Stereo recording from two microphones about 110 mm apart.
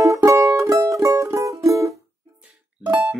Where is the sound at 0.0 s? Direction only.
30° right (ahead or behind).